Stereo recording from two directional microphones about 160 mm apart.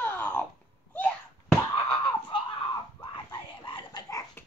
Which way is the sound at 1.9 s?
30° left (ahead or behind).